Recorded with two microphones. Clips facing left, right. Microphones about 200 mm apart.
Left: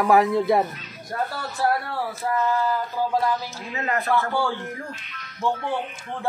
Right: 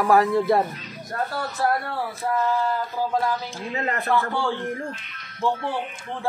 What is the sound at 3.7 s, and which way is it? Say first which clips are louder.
Speech: even; 30° right (ahead or behind).